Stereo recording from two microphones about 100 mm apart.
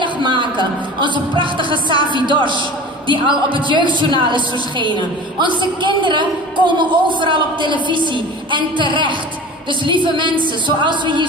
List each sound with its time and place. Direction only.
0.0 s a man's voice: 55° right (ahead or behind)